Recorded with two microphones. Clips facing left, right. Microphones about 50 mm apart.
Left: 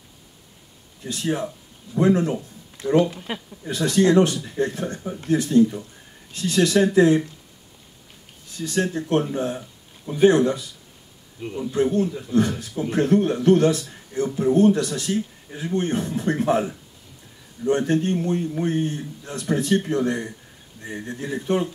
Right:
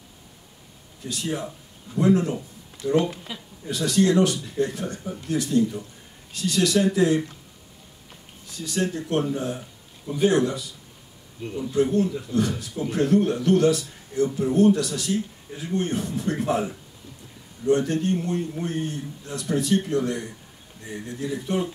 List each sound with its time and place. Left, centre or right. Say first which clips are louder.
1.0 s a man's voice: left 4 dB; left
8.5 s a man's voice: left 3 dB; left
11.4 s speech: left 1 dB; centre
11.7 s a man's voice: even; left